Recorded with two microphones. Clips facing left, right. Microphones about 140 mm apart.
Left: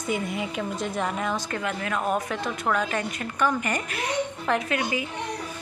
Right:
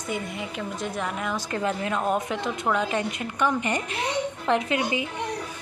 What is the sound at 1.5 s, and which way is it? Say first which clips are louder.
A woman's voice: right 2 dB; 25° right (ahead or behind).